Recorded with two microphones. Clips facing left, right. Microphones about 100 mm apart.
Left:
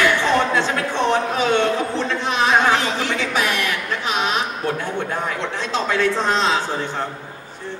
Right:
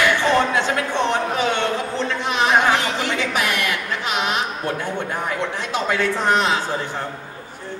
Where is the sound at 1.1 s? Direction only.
15° right (ahead or behind).